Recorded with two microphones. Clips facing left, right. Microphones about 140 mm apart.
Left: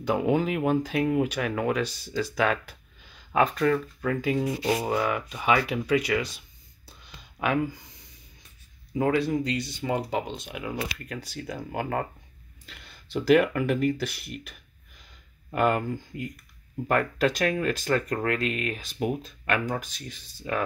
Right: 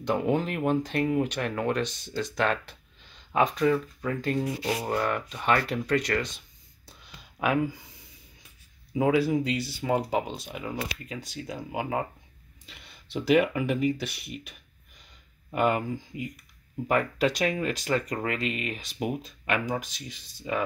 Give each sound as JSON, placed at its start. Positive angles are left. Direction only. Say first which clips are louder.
{"t": 0.0, "sound": "speech", "louder": "left 2 dB", "side_deg": 5}
{"t": 7.0, "sound": "a sound", "louder": "even", "side_deg": 0}
{"t": 8.9, "sound": "speech", "louder": "right 1 dB", "side_deg": -5}